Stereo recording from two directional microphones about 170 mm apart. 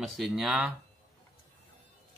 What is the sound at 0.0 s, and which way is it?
Speech, centre (ahead or behind).